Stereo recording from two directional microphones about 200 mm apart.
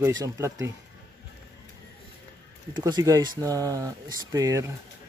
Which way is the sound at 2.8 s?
15° right (ahead or behind).